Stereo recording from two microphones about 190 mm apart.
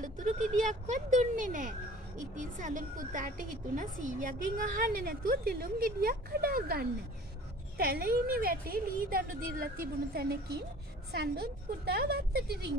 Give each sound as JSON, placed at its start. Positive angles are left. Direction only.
{"t": 0.0, "sound": "a woman's voice", "side_deg": -40}